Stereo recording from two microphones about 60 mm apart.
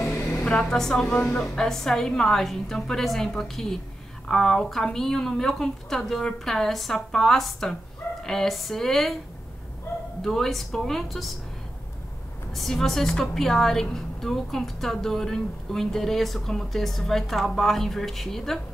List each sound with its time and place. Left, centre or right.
0.4 s a woman's voice: centre
0.7 s a woman's voice: centre
1.0 s a woman's voice: left
1.4 s a woman's voice: centre
10.2 s a woman's voice: centre
12.5 s a woman's voice: centre